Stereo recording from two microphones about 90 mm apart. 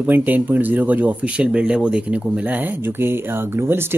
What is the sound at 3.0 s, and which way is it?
Speech, 25° right (ahead or behind).